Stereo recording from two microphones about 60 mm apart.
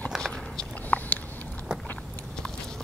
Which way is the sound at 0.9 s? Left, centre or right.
Left.